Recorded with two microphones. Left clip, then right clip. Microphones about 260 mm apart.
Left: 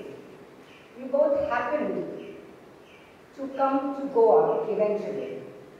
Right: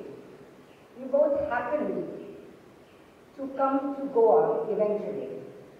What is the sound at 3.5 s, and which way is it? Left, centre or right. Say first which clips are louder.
A man's voice: left 2 dB; centre.